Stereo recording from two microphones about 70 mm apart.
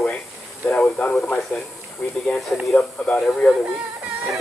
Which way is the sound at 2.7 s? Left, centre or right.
Centre.